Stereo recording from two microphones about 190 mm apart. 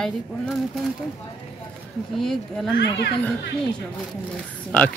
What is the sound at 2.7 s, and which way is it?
Speech, 65° left (ahead or behind).